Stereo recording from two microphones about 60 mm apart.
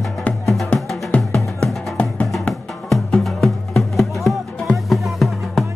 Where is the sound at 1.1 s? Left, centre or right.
Left.